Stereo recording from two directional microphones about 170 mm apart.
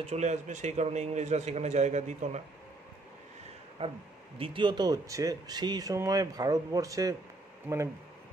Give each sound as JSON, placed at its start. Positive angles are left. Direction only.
{"t": 0.0, "sound": "a man's voice", "side_deg": -40}
{"t": 3.8, "sound": "a man's voice", "side_deg": -35}
{"t": 7.7, "sound": "speech", "side_deg": -10}